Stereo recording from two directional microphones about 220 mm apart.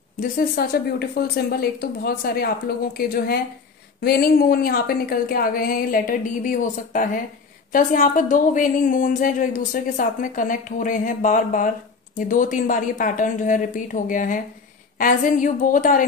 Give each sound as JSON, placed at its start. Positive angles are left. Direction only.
{"t": 0.2, "sound": "a woman's voice", "side_deg": 40}